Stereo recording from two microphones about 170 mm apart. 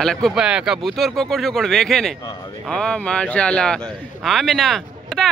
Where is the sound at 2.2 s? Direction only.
25° left (ahead or behind).